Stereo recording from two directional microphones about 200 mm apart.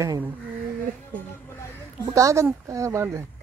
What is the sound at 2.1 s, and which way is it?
Speech, 15° right (ahead or behind).